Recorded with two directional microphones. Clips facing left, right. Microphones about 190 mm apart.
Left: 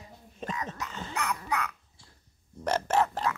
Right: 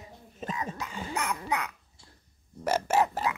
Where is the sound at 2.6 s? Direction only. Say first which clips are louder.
Right 1 dB; 5° right (ahead or behind).